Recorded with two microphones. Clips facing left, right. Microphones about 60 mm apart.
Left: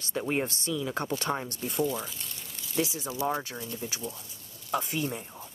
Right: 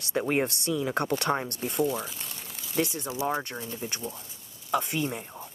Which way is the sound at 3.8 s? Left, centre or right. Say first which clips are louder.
Right 2 dB; right.